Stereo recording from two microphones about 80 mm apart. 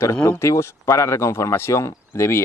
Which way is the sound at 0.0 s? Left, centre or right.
Left.